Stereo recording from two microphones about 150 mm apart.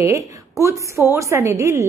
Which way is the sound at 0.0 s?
20° right (ahead or behind).